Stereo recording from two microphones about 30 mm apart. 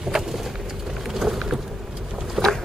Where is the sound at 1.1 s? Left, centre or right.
Centre.